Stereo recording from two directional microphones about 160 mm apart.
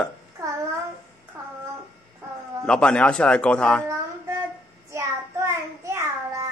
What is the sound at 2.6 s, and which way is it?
Speech, 5° left (ahead or behind).